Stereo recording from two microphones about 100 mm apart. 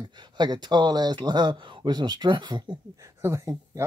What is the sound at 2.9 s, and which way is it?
Speech, 30° right (ahead or behind).